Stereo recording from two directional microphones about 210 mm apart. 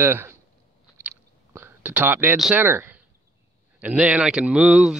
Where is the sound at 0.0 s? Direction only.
10° right (ahead or behind).